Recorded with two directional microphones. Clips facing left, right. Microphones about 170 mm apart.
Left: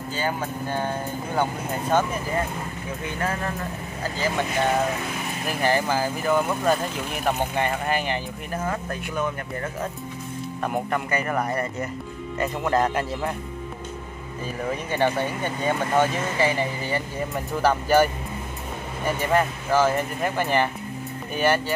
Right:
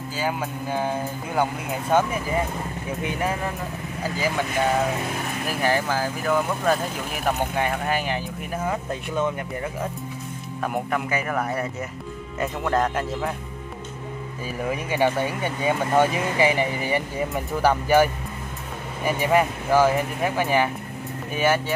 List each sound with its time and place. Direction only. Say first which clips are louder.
0.1 s speech: even; 5° right (ahead or behind)
8.6 s speech: right 3 dB; 20° right (ahead or behind)
10.6 s speech: right 1 dB; centre (ahead or behind)
14.6 s speech: right 1 dB; 10° right (ahead or behind)
17.3 s speech: even; 5° right (ahead or behind)